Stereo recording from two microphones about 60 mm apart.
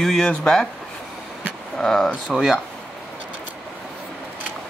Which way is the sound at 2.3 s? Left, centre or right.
Centre.